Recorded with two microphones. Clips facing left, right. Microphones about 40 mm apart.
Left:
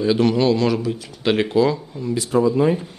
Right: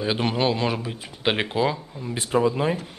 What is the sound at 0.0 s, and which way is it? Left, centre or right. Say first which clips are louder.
Speech: left 6 dB; right.